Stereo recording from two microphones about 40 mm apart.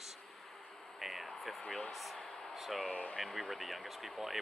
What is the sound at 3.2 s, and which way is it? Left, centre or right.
Speech, centre.